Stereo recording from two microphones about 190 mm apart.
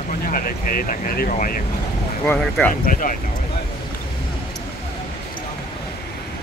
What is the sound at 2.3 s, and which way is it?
Speech, 5° left (ahead or behind).